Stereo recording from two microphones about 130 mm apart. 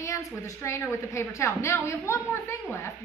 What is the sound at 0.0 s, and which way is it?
A woman's voice, 20° left (ahead or behind).